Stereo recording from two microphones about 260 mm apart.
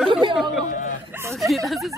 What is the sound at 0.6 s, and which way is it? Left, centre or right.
Speech, left.